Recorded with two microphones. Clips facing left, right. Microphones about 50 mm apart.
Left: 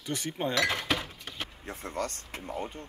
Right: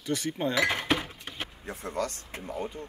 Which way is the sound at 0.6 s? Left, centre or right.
Centre.